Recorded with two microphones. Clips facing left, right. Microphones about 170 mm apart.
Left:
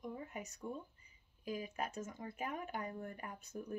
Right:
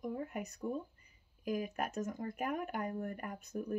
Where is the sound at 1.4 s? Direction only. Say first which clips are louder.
Right 5 dB; 55° right (ahead or behind).